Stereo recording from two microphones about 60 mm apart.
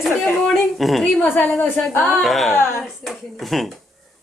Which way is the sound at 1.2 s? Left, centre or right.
Left.